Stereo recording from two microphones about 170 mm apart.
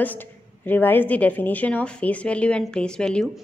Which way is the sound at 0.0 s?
10° left (ahead or behind).